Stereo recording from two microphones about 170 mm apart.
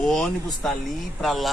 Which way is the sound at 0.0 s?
5° left (ahead or behind).